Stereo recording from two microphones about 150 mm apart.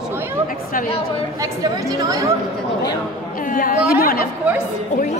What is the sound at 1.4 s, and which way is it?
Speech, 25° right (ahead or behind).